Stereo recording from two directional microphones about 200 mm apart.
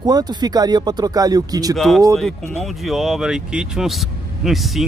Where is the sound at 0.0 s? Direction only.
20° right (ahead or behind).